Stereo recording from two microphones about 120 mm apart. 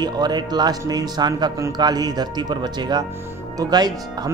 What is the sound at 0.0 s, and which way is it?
Speech, 35° right (ahead or behind).